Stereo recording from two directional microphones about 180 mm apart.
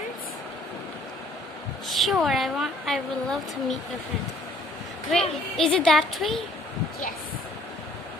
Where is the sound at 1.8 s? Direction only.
Centre (ahead or behind).